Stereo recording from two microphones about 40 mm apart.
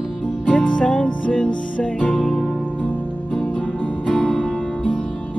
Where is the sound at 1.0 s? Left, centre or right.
Left.